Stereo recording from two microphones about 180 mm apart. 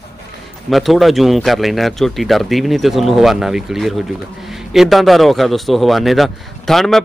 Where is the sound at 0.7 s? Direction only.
Centre (ahead or behind).